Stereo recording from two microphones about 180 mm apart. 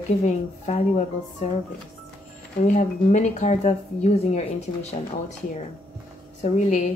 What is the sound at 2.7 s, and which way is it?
Speech, 40° left (ahead or behind).